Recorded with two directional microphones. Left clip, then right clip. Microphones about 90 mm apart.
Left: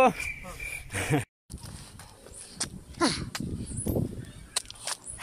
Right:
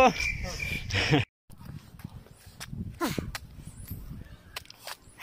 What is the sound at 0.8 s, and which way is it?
Speech, 10° left (ahead or behind).